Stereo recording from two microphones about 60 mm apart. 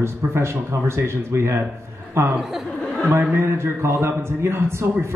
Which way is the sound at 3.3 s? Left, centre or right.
Right.